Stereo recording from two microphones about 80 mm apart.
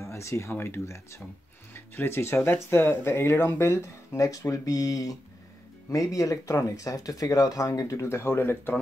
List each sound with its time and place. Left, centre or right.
0.0 s speech: left